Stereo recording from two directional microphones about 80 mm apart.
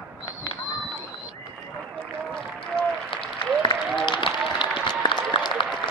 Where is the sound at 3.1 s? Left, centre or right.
Left.